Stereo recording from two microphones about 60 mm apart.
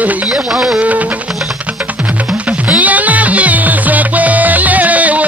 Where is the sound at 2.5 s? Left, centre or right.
Right.